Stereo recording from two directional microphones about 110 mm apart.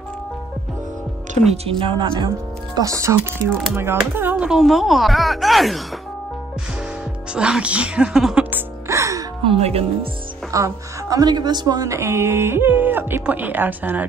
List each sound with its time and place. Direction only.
1.5 s a woman's voice: 55° right (ahead or behind); by 4.5 s 20° right (ahead or behind)
4.5 s speech: centre (ahead or behind)
7.3 s a woman's voice: 10° right (ahead or behind)
8.5 s music: 25° right (ahead or behind)
9.4 s speech: 60° right (ahead or behind)
10.5 s a woman's voice: 30° right (ahead or behind)